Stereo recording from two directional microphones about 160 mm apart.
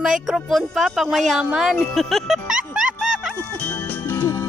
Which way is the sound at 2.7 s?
5° right (ahead or behind).